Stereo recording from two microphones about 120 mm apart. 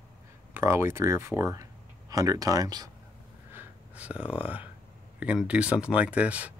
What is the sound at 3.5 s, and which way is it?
Gasp, 10° right (ahead or behind).